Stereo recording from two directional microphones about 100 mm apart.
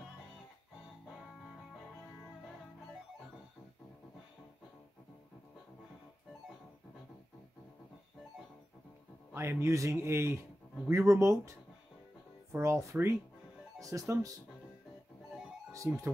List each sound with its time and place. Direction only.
9.3 s speech: 25° right (ahead or behind)
12.5 s speech: 30° right (ahead or behind)
15.8 s speech: 20° right (ahead or behind)